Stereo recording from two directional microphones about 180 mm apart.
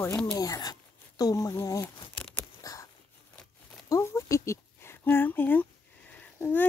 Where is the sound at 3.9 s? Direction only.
15° left (ahead or behind).